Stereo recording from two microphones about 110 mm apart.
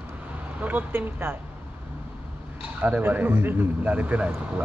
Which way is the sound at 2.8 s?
15° right (ahead or behind).